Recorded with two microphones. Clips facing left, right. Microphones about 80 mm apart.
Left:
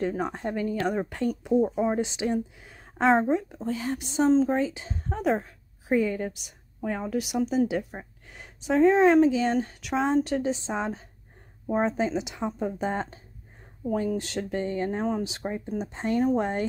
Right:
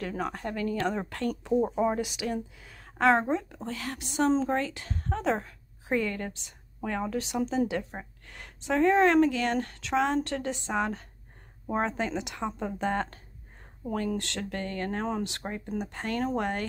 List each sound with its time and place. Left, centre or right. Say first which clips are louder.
0.0 s speech: left 4 dB; left
4.3 s speech: left 5 dB; centre
4.6 s a woman's voice: left 4 dB; centre
15.4 s speech: left 4 dB; centre
15.8 s speech: left 6 dB; left